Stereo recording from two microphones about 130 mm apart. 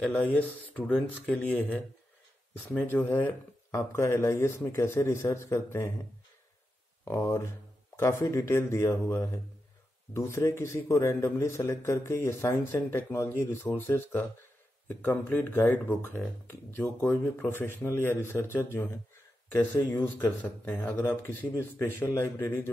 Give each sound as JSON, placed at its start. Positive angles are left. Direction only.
{"t": 0.0, "sound": "a man's voice", "side_deg": 10}
{"t": 7.1, "sound": "a man's voice", "side_deg": 20}